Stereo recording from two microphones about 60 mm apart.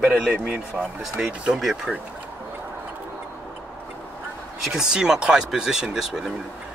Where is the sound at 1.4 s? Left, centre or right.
Centre.